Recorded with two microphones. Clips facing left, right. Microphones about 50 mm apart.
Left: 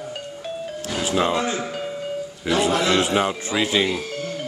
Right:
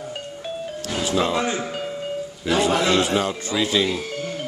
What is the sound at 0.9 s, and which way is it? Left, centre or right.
Speech, centre.